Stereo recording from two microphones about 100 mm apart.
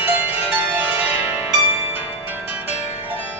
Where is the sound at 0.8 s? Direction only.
20° right (ahead or behind).